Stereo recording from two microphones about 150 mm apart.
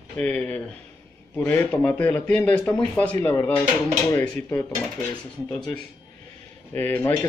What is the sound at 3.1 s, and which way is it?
Speech, 20° left (ahead or behind).